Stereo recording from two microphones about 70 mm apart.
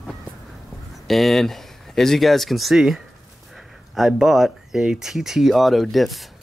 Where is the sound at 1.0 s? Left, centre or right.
Centre.